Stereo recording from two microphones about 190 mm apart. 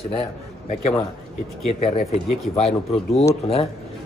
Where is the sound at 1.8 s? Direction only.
35° left (ahead or behind).